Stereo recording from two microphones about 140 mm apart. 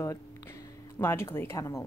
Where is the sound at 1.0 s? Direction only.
15° left (ahead or behind).